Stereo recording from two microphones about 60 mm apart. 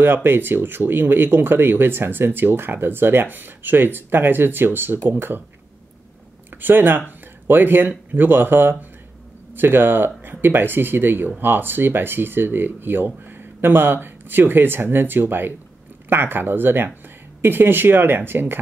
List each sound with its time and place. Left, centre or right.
0.0 s speech: right
6.6 s speech: right